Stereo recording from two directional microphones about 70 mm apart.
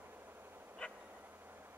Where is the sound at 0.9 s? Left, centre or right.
Right.